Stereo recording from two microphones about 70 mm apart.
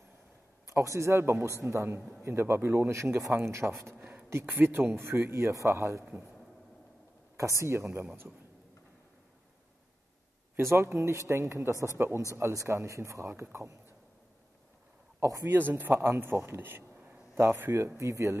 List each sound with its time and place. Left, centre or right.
0.7 s speech: right
3.9 s a sound: right
4.6 s speech: right
7.3 s speech: right
10.6 s speech: right
13.3 s speech: right
15.1 s speech: right
15.5 s speech: right
16.9 s a sound: centre
17.4 s speech: right